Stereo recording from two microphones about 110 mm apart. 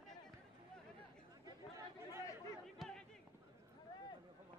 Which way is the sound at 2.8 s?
5° left (ahead or behind).